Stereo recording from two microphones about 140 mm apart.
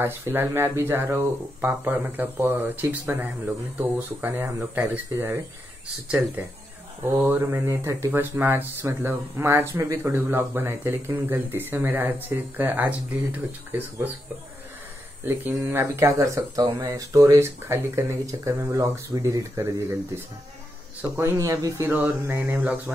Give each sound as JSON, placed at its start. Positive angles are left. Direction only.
{"t": 0.0, "sound": "speech", "side_deg": -15}
{"t": 7.1, "sound": "speech", "side_deg": -15}
{"t": 15.2, "sound": "speech", "side_deg": -15}
{"t": 21.0, "sound": "speech", "side_deg": -20}
{"t": 21.8, "sound": "speech", "side_deg": -10}